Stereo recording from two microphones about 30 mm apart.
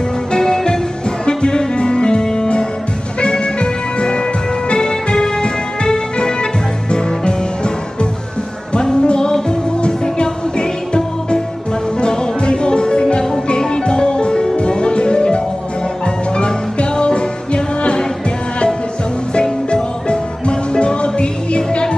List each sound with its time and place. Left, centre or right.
0.3 s music: left
19.7 s music: left